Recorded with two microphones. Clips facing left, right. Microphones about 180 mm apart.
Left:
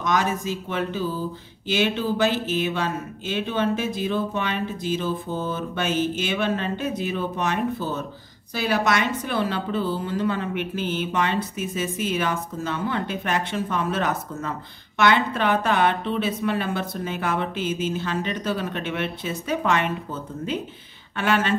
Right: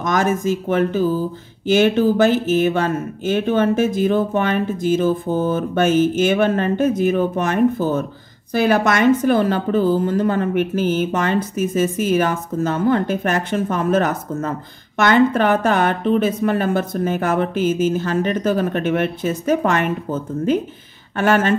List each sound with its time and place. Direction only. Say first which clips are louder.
0.0 s speech: right 5 dB; 50° right (ahead or behind)